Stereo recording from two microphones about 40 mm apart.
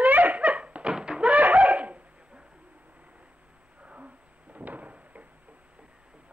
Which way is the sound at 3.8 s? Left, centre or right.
Right.